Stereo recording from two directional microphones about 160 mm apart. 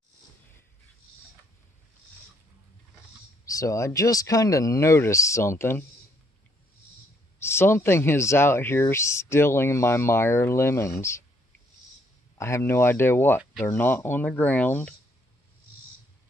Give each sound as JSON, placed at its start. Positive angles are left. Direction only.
{"t": 3.4, "sound": "speech", "side_deg": 20}
{"t": 7.3, "sound": "speech", "side_deg": 15}
{"t": 12.4, "sound": "speech", "side_deg": 15}